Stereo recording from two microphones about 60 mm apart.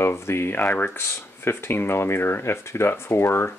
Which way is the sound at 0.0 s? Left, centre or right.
Left.